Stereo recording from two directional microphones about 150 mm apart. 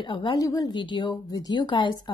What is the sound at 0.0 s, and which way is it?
A woman's voice, 30° left (ahead or behind).